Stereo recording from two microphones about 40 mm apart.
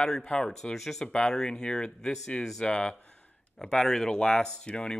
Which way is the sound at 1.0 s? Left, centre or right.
Left.